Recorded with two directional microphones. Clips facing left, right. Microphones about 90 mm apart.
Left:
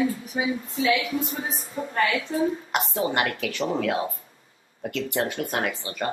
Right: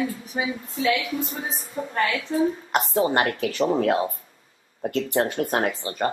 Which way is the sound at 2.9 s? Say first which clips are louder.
Right 5 dB; 35° right (ahead or behind).